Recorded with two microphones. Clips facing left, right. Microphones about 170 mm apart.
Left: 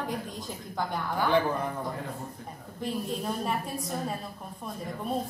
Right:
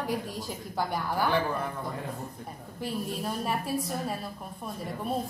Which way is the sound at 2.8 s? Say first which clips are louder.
Left 1 dB; 5° right (ahead or behind).